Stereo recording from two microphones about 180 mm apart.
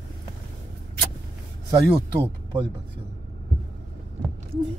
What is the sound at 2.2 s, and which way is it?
Speech, 20° right (ahead or behind).